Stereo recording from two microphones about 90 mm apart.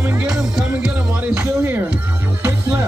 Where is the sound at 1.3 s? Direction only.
30° right (ahead or behind).